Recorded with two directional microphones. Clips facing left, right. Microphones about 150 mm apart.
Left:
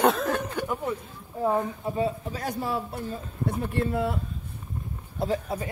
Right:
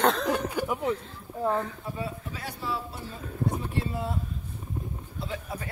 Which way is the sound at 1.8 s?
25° left (ahead or behind).